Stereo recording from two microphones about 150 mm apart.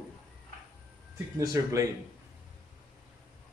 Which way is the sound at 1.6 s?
25° right (ahead or behind).